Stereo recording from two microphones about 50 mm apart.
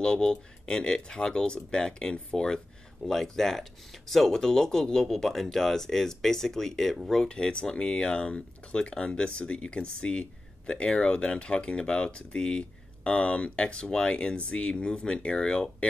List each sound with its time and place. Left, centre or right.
0.0 s speech: centre
7.2 s speech: centre